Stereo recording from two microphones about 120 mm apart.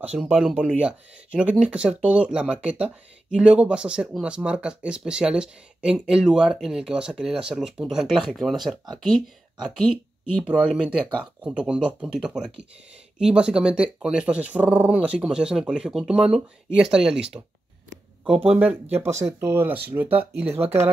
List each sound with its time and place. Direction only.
0.2 s speech: 5° right (ahead or behind)
18.5 s speech: 15° right (ahead or behind)